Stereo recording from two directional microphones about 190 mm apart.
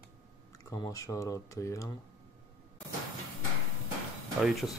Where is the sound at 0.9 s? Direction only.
15° left (ahead or behind).